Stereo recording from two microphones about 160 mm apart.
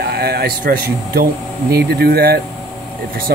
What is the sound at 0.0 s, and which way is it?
Speech, 90° right.